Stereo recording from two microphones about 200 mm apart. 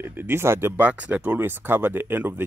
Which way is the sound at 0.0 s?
10° right (ahead or behind).